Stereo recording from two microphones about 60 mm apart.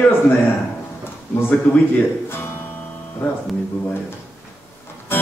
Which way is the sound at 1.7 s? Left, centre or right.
Left.